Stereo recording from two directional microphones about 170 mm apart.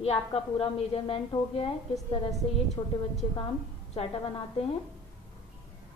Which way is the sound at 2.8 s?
20° left (ahead or behind).